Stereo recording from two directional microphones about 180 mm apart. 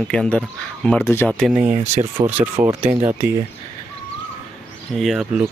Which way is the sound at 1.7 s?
40° right (ahead or behind).